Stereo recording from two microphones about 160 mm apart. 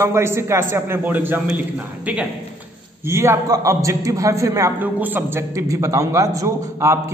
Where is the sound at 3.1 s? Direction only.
15° right (ahead or behind).